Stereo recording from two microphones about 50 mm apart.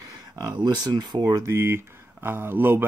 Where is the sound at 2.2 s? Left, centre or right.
Right.